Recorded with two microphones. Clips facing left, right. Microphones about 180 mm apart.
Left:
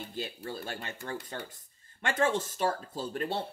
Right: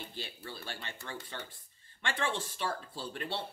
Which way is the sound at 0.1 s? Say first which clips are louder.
Left 7 dB; 45° left (ahead or behind).